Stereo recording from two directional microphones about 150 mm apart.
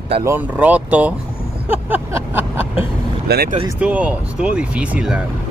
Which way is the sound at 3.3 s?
90° right.